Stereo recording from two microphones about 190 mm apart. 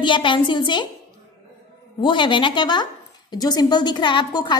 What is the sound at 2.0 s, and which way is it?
A woman's voice, 25° left (ahead or behind).